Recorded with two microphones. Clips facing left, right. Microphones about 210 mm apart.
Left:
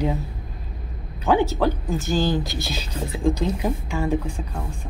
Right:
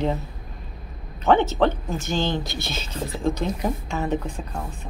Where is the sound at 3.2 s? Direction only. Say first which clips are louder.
Left 3 dB; 10° left (ahead or behind).